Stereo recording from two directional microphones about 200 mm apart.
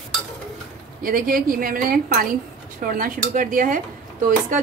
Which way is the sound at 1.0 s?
45° right (ahead or behind).